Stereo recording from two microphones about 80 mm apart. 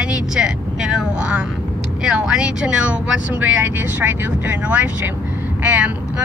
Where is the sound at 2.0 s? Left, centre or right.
Centre.